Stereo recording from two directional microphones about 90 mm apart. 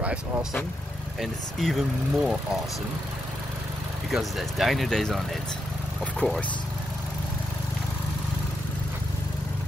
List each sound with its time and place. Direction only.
0.0 s speech: 10° right (ahead or behind)
1.2 s speech: centre (ahead or behind)
4.1 s speech: centre (ahead or behind)